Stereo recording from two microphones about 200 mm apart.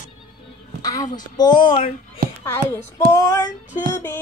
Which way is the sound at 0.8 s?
20° left (ahead or behind).